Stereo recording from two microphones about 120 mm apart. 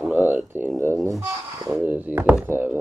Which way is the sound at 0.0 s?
15° right (ahead or behind).